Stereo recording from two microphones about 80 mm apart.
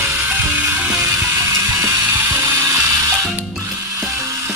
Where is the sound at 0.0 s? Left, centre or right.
Right.